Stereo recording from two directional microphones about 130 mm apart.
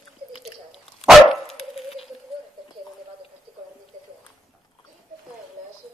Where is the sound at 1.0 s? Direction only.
Centre (ahead or behind).